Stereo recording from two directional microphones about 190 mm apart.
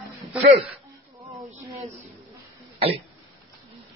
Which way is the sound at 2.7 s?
30° right (ahead or behind).